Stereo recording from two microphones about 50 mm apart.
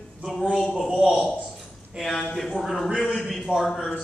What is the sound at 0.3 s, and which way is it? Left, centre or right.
Speech, centre.